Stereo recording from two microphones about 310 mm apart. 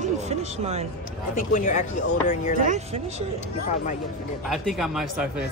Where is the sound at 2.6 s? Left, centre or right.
Right.